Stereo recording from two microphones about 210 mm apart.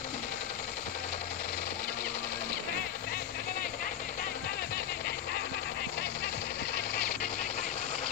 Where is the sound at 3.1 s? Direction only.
50° left (ahead or behind); by 8.0 s 35° left (ahead or behind).